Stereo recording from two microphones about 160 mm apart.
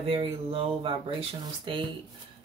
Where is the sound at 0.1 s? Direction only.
35° right (ahead or behind).